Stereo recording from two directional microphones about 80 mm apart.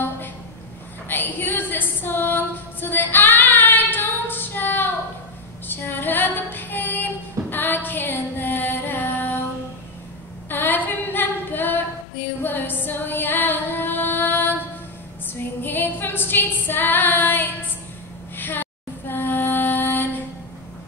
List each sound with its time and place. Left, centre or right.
1.0 s music: left
5.7 s female singing: left
10.5 s female singing: left
12.4 s music: left
15.6 s female singing: left
18.3 s music: left